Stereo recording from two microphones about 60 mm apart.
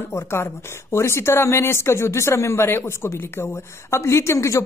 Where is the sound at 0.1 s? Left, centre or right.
Left.